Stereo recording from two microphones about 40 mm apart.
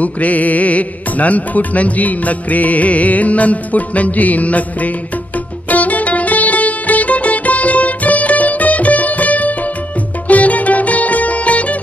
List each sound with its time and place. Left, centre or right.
0.0 s music: left